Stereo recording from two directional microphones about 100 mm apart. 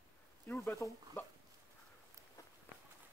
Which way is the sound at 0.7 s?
25° left (ahead or behind).